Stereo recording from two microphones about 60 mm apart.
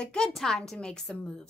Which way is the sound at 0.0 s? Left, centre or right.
Centre.